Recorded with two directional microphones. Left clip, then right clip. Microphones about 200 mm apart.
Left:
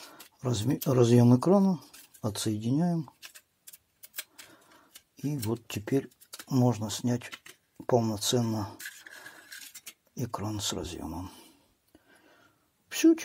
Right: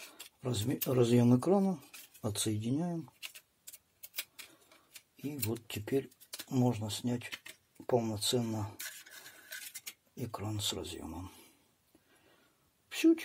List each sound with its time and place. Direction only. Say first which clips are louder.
0.1 s speech: left 5 dB; 35° left (ahead or behind)
5.1 s speech: left 6 dB; 35° left (ahead or behind)
10.1 s speech: left 6 dB; 35° left (ahead or behind)
12.9 s a sound: left 5 dB; 35° left (ahead or behind)